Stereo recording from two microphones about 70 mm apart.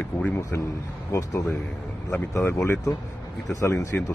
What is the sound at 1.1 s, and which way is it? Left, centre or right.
Speech, left.